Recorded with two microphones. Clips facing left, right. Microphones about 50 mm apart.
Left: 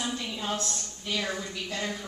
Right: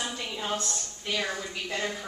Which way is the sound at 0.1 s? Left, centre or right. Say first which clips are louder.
Even; centre.